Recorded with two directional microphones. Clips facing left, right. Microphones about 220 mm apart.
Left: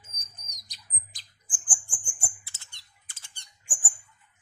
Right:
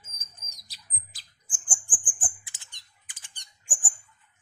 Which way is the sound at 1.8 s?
15° right (ahead or behind).